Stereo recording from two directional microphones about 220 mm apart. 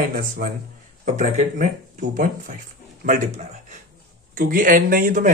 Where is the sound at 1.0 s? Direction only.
30° right (ahead or behind).